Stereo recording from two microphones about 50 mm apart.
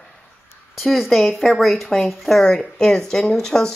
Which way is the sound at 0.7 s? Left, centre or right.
Centre.